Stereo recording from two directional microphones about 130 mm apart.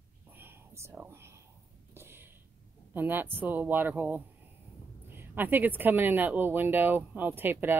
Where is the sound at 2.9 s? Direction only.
15° right (ahead or behind).